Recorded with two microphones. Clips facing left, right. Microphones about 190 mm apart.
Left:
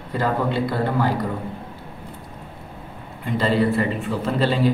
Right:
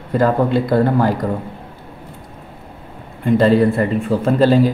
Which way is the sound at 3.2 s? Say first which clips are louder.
Right 7 dB; 50° right (ahead or behind).